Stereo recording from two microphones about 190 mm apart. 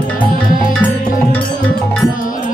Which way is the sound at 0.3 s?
45° left (ahead or behind).